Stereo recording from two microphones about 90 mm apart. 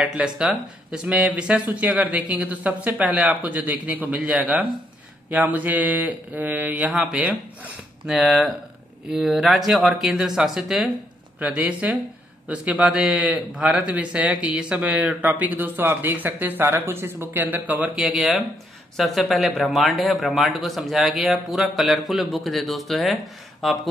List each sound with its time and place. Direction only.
0.0 s a man's voice: 10° right (ahead or behind)
11.3 s a man's voice: 15° right (ahead or behind); by 23.8 s centre (ahead or behind)